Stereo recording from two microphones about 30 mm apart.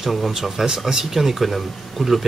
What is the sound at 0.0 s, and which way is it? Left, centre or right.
Speech, centre.